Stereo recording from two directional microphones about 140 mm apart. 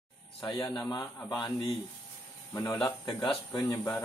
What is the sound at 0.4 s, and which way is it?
Speech, 30° left (ahead or behind).